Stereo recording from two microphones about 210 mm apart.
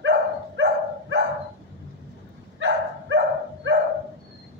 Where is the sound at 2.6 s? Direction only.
60° right (ahead or behind).